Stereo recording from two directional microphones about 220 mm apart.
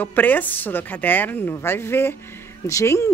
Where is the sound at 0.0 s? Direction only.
10° left (ahead or behind).